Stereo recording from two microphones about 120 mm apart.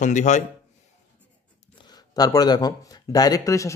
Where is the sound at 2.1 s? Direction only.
30° left (ahead or behind).